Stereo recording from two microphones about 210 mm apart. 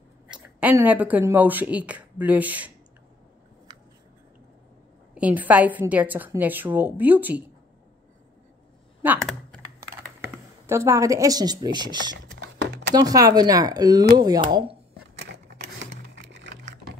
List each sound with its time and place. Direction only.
0.3 s speech: 5° right (ahead or behind)
5.1 s a woman's voice: 5° right (ahead or behind)
9.0 s speech: 10° right (ahead or behind)
10.7 s a woman's voice: 15° right (ahead or behind)
12.3 s a sound: 65° right (ahead or behind)
12.9 s a woman's voice: 15° right (ahead or behind)
15.1 s typewriter: 55° right (ahead or behind)